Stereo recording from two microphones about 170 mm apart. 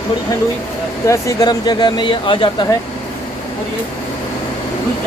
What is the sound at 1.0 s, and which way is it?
Speech, 20° left (ahead or behind).